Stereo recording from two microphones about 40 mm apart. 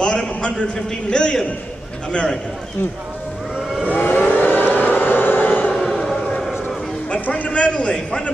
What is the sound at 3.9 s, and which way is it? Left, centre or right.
Civil defense siren, left.